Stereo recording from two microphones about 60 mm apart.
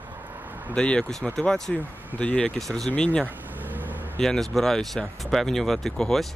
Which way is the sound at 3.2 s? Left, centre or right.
Right.